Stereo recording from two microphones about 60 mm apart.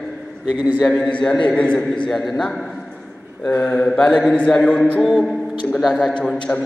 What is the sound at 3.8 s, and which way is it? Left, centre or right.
A man's voice, centre.